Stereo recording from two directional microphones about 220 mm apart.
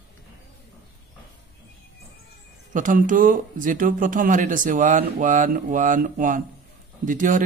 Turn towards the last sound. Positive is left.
turn(degrees=-35)  # may be behind; listen again after turning